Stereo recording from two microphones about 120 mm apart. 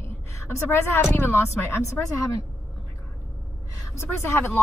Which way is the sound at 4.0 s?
20° left (ahead or behind).